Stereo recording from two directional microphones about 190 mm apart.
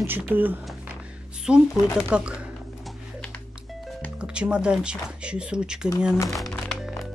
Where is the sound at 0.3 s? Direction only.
10° right (ahead or behind).